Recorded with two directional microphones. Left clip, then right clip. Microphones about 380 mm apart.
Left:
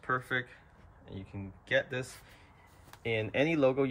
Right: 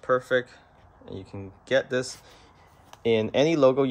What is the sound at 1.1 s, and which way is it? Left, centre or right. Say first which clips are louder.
Speech: right 8 dB; centre.